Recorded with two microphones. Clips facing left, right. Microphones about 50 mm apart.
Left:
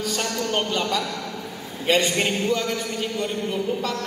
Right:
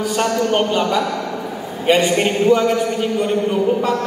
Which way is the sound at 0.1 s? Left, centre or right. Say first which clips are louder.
Right 9 dB; centre.